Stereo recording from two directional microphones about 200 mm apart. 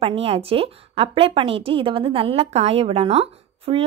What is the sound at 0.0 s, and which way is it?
A woman's voice, 30° right (ahead or behind).